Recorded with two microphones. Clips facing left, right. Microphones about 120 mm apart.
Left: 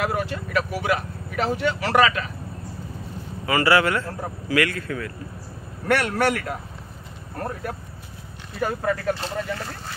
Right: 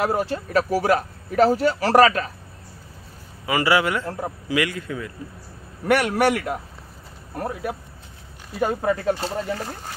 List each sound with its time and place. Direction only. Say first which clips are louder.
0.0 s speech: right 3 dB; 30° right (ahead or behind)
3.4 s a man's voice: left 1 dB; 15° right (ahead or behind)